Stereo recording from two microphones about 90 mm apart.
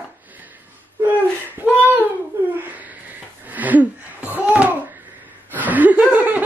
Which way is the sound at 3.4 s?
20° right (ahead or behind).